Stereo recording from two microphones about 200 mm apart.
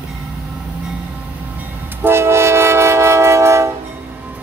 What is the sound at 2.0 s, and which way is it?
Train, 10° right (ahead or behind).